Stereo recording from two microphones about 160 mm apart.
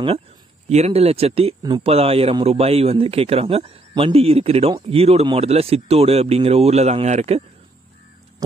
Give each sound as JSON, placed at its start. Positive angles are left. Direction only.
{"t": 0.7, "sound": "speech", "side_deg": -45}